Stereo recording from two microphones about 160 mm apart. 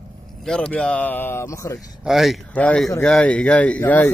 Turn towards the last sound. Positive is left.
turn(degrees=10)  # may be behind; listen again after turning